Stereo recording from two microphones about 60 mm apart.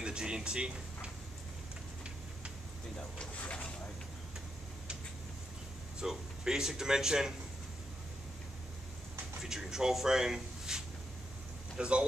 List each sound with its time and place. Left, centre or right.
0.0 s speech: centre
3.3 s speech: centre
5.9 s speech: centre
9.4 s speech: centre
11.8 s speech: centre